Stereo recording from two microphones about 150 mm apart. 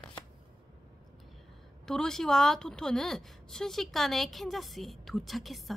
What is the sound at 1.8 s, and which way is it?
A woman's voice, 5° left (ahead or behind).